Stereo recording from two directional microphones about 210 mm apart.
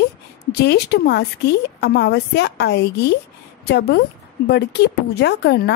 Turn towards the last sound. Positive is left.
turn(degrees=55)  # may be behind; listen again after turning